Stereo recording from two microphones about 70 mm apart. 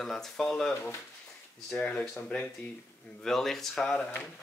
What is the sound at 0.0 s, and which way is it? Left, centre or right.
Speech, centre.